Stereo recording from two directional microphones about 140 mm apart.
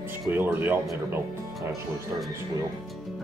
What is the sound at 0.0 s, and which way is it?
Speech, 15° right (ahead or behind).